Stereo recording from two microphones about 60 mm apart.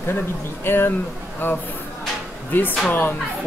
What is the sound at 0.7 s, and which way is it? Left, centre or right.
Speech, left.